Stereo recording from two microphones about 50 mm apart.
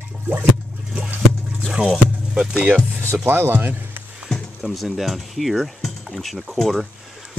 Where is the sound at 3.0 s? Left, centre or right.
Right.